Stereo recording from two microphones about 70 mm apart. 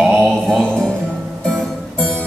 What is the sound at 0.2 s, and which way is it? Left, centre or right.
Mantra, centre.